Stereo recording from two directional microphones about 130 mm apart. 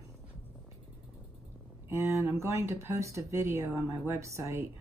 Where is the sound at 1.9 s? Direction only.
20° right (ahead or behind).